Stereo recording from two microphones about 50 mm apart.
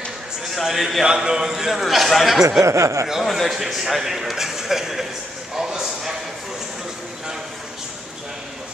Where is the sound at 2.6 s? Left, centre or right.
Right.